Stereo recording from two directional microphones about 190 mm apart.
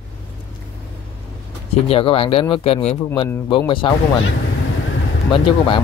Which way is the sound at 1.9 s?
30° left (ahead or behind).